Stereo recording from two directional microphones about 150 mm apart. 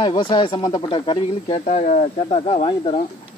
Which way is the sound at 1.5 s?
55° left (ahead or behind).